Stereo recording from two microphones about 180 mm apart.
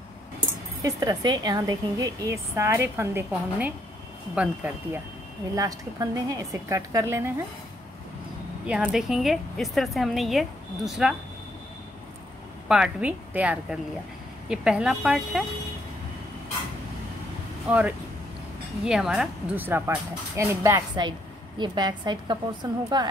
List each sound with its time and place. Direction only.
0.8 s a woman's voice: 20° right (ahead or behind)
8.6 s a woman's voice: 5° right (ahead or behind)
12.6 s a woman's voice: 5° right (ahead or behind)
17.6 s a woman's voice: 5° right (ahead or behind); by 23.0 s 25° right (ahead or behind)